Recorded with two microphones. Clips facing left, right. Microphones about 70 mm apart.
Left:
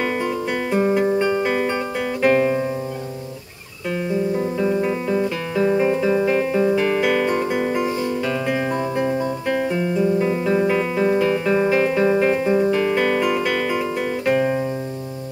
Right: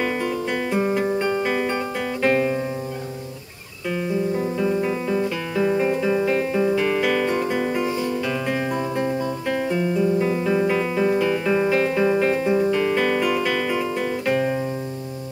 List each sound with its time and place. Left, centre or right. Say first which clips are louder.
0.7 s music: left 4 dB; centre
4.4 s music: left 2 dB; centre